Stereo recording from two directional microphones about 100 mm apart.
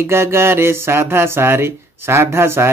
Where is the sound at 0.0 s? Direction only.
25° right (ahead or behind).